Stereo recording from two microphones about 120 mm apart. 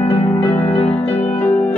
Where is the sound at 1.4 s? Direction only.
15° left (ahead or behind).